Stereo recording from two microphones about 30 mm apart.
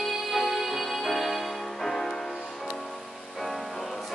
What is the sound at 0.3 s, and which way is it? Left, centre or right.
Music, centre.